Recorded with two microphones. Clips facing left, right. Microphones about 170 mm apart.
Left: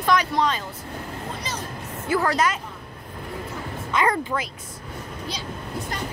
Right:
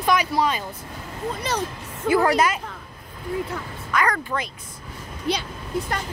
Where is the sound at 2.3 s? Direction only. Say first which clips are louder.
Right 3 dB; 10° right (ahead or behind).